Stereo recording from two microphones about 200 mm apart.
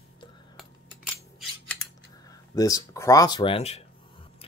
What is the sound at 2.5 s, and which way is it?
Speech, 15° left (ahead or behind).